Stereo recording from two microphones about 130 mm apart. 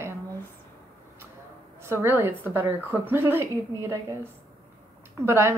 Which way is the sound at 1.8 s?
20° right (ahead or behind).